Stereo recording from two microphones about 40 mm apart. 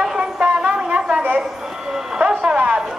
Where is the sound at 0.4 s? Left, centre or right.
Right.